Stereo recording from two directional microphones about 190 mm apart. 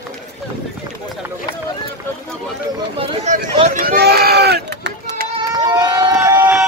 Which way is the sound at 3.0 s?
35° right (ahead or behind).